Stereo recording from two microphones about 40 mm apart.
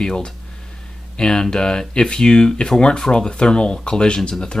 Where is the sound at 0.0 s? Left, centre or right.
Left.